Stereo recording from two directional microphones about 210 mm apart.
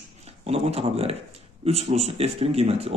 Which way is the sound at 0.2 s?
30° right (ahead or behind).